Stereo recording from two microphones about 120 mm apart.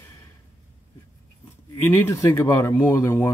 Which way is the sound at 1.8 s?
20° left (ahead or behind).